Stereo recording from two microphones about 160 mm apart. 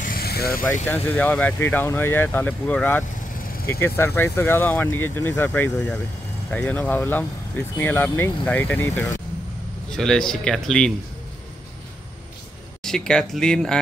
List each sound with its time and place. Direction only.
0.0 s vehicle: 70° left (ahead or behind)
0.8 s speech: 10° left (ahead or behind)
12.8 s speech: 5° left (ahead or behind)